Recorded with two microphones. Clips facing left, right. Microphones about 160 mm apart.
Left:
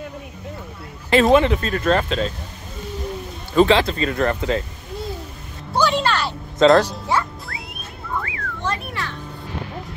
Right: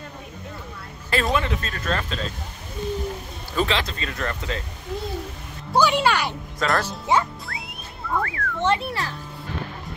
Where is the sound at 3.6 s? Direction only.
35° left (ahead or behind).